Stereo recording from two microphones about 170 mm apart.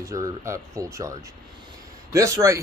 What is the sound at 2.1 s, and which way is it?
Speech, 20° right (ahead or behind).